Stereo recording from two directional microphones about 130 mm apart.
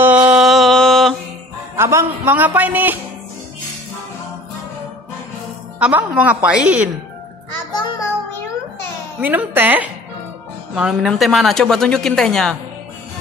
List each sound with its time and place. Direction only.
0.0 s a sound: 10° right (ahead or behind)
1.8 s a man's voice: 20° right (ahead or behind)
5.8 s a man's voice: 10° right (ahead or behind)
9.2 s a man's voice: 15° right (ahead or behind); by 12.5 s 5° left (ahead or behind)